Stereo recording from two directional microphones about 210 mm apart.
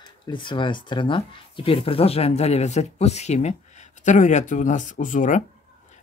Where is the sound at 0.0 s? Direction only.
20° left (ahead or behind).